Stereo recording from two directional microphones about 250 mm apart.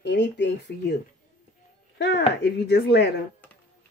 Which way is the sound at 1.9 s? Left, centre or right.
Left.